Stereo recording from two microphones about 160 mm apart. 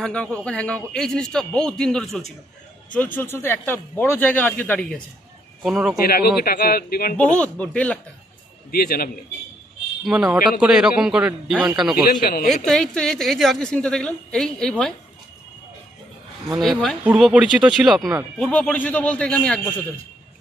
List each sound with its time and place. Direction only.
0.0 s a woman's voice: 5° left (ahead or behind)
5.6 s a woman's voice: 5° right (ahead or behind)
6.0 s speech: 70° left (ahead or behind)
7.2 s speech: 10° left (ahead or behind)
8.7 s speech: 70° left (ahead or behind)
10.0 s a woman's voice: 5° right (ahead or behind)
12.1 s a man's voice: 65° left (ahead or behind)
12.6 s a woman's voice: 5° left (ahead or behind)
16.5 s a woman's voice: 5° left (ahead or behind)
17.0 s a woman's voice: 5° right (ahead or behind)